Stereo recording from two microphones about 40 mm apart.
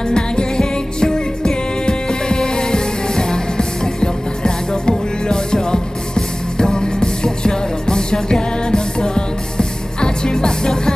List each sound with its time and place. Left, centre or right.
0.1 s music: centre